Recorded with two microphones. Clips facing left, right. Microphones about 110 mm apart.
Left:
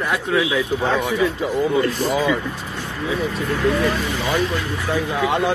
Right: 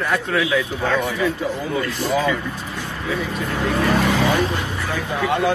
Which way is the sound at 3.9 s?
70° right (ahead or behind).